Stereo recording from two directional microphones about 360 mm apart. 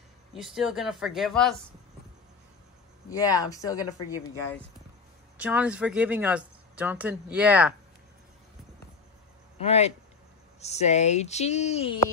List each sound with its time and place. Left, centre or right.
0.3 s speech: centre
3.1 s speech: centre
5.4 s speech: centre
9.7 s speech: centre